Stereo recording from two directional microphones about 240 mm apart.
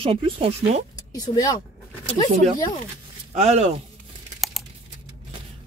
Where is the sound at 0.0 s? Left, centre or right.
Right.